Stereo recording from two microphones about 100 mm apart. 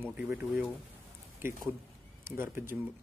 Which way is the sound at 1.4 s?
20° right (ahead or behind).